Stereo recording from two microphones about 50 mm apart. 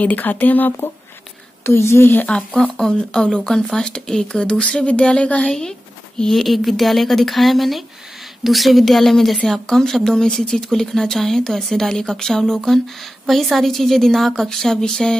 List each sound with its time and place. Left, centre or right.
0.0 s speech: left
1.6 s speech: left
2.3 s speech: left
3.1 s speech: centre